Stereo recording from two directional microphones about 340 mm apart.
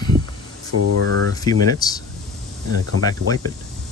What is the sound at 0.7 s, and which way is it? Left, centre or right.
Speech, right.